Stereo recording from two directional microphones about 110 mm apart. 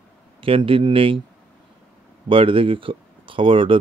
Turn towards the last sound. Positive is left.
turn(degrees=-55)  # may be behind; listen again after turning